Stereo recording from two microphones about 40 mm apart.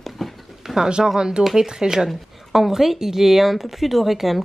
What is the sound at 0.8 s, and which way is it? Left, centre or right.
A woman's voice, centre.